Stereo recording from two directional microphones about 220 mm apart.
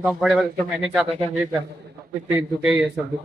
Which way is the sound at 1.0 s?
25° right (ahead or behind).